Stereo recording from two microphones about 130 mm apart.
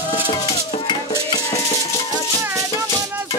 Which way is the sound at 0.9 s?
30° left (ahead or behind).